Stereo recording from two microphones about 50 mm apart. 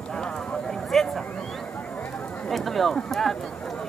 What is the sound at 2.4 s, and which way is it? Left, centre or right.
Speech, centre.